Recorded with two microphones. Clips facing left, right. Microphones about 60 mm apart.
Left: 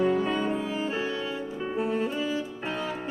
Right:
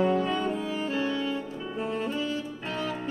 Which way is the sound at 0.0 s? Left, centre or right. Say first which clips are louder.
Even; centre.